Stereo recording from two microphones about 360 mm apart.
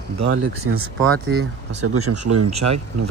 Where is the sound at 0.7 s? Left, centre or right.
Right.